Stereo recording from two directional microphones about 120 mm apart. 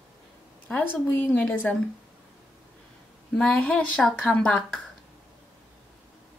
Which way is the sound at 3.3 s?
10° left (ahead or behind).